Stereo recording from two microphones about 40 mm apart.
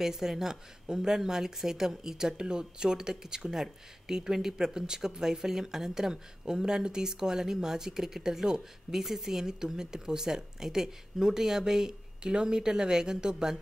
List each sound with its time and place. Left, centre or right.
0.0 s speech: centre